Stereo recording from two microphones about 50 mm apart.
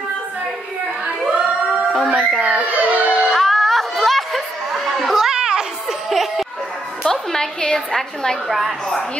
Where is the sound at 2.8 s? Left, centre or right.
Right.